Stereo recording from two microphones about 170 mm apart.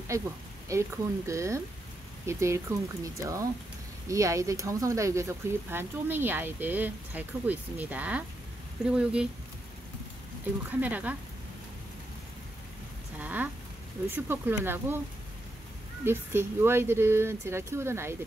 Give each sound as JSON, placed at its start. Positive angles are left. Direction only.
{"t": 0.7, "sound": "speech", "side_deg": -15}
{"t": 10.7, "sound": "speech", "side_deg": -10}
{"t": 13.2, "sound": "a sound", "side_deg": -10}
{"t": 14.1, "sound": "speech", "side_deg": -10}
{"t": 16.0, "sound": "speech", "side_deg": -15}